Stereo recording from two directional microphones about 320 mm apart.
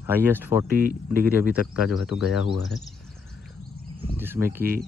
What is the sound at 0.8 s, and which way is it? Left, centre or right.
Speech, right.